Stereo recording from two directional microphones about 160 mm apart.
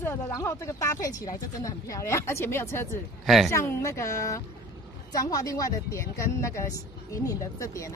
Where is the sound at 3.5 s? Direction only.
15° left (ahead or behind).